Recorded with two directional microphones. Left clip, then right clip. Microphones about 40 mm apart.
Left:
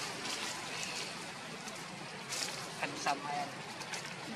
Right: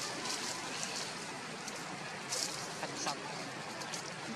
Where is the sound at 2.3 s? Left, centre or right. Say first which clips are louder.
Even; left.